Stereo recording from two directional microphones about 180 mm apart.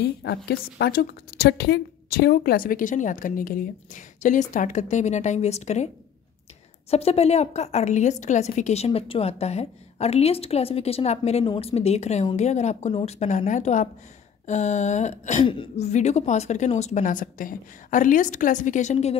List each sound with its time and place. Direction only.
0.2 s a woman's voice: 65° left (ahead or behind); by 5.9 s 40° left (ahead or behind)
6.9 s a woman's voice: 35° left (ahead or behind)
15.4 s a woman's voice: 30° left (ahead or behind)